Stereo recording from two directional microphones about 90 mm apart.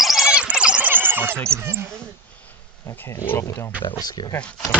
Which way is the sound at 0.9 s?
20° right (ahead or behind).